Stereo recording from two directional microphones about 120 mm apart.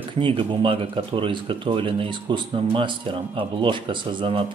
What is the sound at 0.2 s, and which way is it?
Speech, 45° right (ahead or behind).